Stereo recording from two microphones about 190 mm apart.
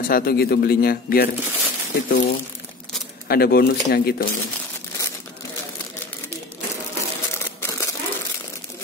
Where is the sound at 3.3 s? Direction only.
55° left (ahead or behind).